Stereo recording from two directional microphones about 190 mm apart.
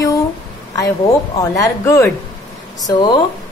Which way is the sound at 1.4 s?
15° left (ahead or behind).